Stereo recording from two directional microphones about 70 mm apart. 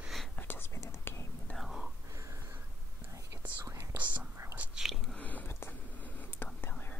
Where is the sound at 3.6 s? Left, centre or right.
Right.